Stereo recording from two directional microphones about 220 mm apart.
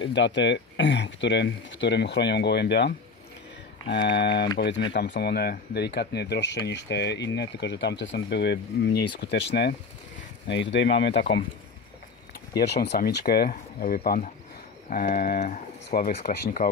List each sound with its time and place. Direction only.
0.0 s speech: 55° left (ahead or behind)
3.9 s speech: 50° left (ahead or behind)
12.5 s speech: 50° left (ahead or behind)